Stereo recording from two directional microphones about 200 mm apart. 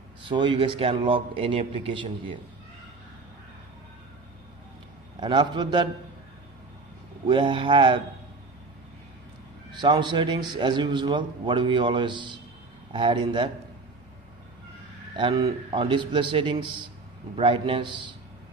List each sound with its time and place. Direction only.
0.2 s a man's voice: 25° right (ahead or behind)
5.2 s a man's voice: 20° right (ahead or behind)
7.2 s a man's voice: 25° right (ahead or behind)
9.7 s a man's voice: 20° right (ahead or behind)
15.1 s a man's voice: 25° right (ahead or behind)